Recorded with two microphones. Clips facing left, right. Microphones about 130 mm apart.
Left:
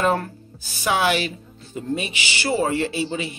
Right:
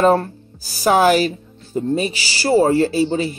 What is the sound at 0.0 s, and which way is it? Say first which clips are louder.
Speech: right 7 dB; 35° right (ahead or behind).